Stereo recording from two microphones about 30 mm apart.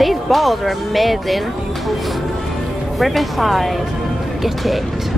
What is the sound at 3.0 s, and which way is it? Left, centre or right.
Speech, centre.